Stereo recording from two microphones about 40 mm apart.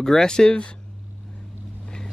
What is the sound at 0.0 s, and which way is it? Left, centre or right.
Speech, centre.